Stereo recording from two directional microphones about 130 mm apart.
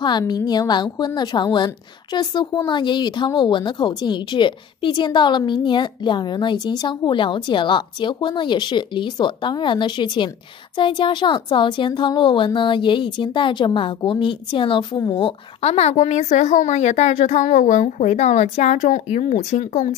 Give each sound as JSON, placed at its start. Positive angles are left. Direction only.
{"t": 0.3, "sound": "a woman's voice", "side_deg": 30}